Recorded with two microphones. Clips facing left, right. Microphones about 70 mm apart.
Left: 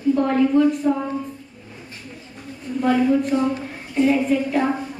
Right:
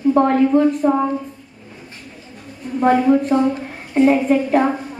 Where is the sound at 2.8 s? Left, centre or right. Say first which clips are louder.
Right 4 dB; right.